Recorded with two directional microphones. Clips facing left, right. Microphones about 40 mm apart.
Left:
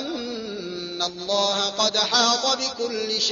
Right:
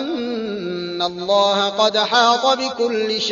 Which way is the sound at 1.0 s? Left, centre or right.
Right.